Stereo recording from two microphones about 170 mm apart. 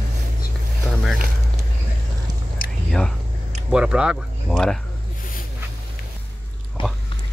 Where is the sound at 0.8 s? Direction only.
Centre (ahead or behind).